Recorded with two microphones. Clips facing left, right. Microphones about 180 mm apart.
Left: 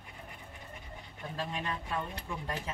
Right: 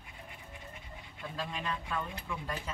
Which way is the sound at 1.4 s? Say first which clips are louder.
Left 1 dB; 30° left (ahead or behind).